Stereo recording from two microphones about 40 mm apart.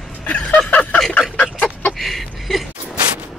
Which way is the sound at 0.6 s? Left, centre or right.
Centre.